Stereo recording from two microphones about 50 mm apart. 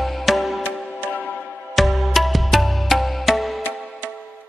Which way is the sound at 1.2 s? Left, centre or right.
Centre.